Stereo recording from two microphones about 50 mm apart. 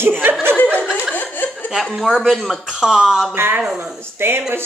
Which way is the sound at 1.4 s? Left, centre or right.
Left.